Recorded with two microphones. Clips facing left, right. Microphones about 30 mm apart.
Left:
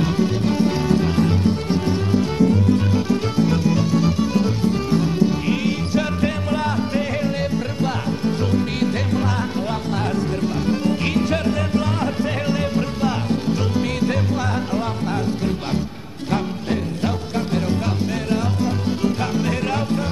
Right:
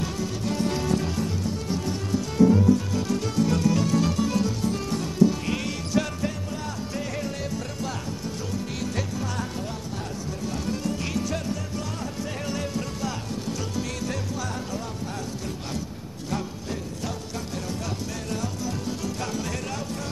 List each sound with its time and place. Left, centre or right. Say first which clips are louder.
0.0 s music: left 9 dB; left
2.9 s music: left 6 dB; left
6.2 s music: left 9 dB; left
10.4 s music: left 5 dB; left
12.4 s music: left 8 dB; left
18.3 s music: left 8 dB; left